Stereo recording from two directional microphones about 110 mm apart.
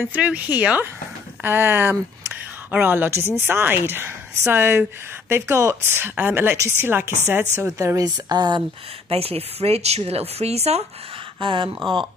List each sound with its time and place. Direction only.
0.0 s a woman's voice: 15° right (ahead or behind); by 8.6 s 40° right (ahead or behind)
9.1 s speech: 65° right (ahead or behind)
11.3 s speech: 50° right (ahead or behind)